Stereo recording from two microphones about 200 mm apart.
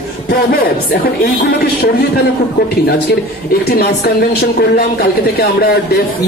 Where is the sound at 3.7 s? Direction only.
55° left (ahead or behind).